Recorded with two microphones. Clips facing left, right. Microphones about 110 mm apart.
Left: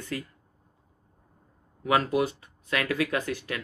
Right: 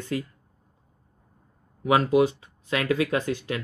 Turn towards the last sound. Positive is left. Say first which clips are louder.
# right 4 dB
turn(degrees=-25)  # may be behind; listen again after turning